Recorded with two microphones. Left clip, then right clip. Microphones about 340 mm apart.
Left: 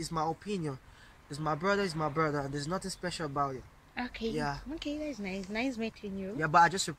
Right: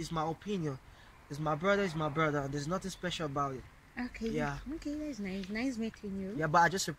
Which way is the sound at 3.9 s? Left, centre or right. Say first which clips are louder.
Left 2 dB; left.